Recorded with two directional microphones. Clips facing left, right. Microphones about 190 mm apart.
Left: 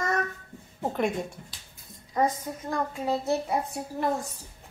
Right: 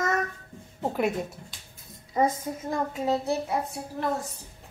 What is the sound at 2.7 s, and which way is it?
Speech, 20° right (ahead or behind).